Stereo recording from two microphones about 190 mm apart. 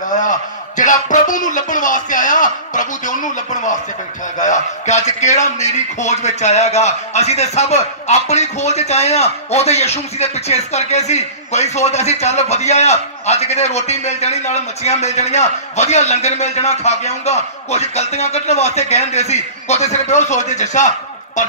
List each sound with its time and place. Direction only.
0.1 s a man's voice: 40° left (ahead or behind)
4.4 s a man's voice: 40° left (ahead or behind)